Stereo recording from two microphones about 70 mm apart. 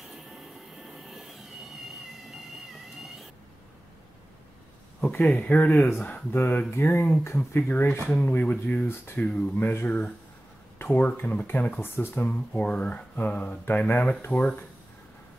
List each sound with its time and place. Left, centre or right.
0.1 s a sound: centre
5.0 s speech: centre
5.7 s speech: left
5.9 s speech: centre
6.3 s speech: left
8.8 s speech: left
9.2 s speech: centre
9.6 s speech: left
9.8 s speech: left
10.8 s a sound: left
11.1 s speech: left
12.3 s speech: centre